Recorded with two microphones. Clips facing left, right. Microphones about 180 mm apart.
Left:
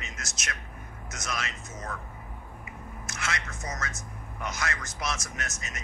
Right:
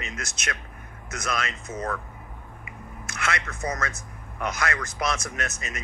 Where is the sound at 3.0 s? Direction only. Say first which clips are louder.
Right 5 dB; 55° right (ahead or behind).